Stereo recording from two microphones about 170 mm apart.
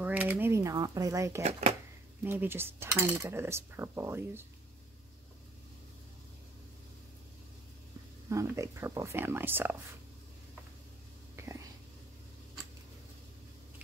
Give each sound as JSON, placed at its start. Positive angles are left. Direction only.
{"t": 0.0, "sound": "speech", "side_deg": -10}
{"t": 1.4, "sound": "speech", "side_deg": -40}
{"t": 2.2, "sound": "cutlery", "side_deg": -15}
{"t": 8.3, "sound": "cutlery", "side_deg": -20}